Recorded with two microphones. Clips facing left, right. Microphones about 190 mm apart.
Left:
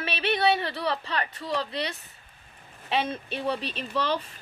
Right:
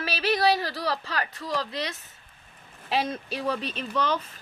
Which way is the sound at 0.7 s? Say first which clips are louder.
Left 1 dB; 30° left (ahead or behind).